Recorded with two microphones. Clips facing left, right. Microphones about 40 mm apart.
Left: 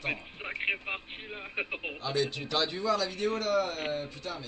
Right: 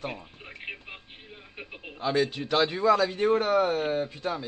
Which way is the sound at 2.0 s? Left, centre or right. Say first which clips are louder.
Right 6 dB; right.